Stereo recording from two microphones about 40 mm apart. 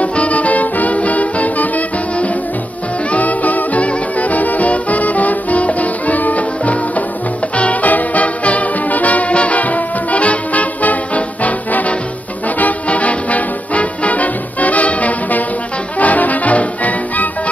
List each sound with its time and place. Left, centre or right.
0.0 s music: left